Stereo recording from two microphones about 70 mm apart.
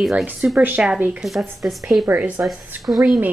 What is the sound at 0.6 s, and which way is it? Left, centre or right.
Speech, centre.